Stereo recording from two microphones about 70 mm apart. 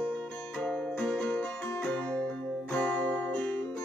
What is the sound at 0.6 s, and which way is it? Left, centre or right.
Music, centre.